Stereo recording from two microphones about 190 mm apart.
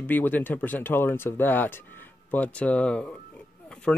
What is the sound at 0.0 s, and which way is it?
Speech, 10° left (ahead or behind).